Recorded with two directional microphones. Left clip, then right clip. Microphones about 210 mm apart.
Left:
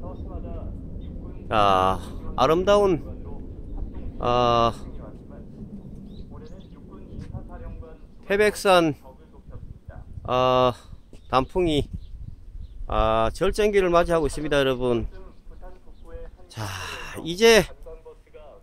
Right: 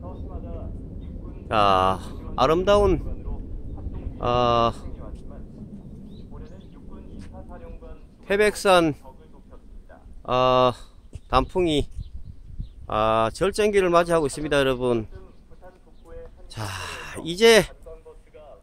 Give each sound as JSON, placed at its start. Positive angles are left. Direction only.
{"t": 1.5, "sound": "a man's voice", "side_deg": -5}
{"t": 4.2, "sound": "a man's voice", "side_deg": 0}
{"t": 8.3, "sound": "a man's voice", "side_deg": -5}
{"t": 10.2, "sound": "a man's voice", "side_deg": -5}
{"t": 16.1, "sound": "a sound", "side_deg": 30}
{"t": 16.4, "sound": "speech", "side_deg": -5}